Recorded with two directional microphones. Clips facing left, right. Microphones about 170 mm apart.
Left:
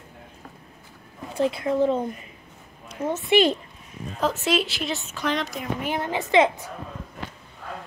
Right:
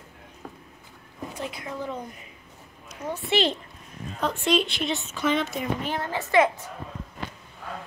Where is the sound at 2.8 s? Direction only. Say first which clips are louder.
Left 6 dB; 25° left (ahead or behind).